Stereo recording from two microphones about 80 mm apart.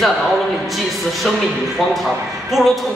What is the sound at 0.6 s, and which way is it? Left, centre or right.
A man's voice, centre.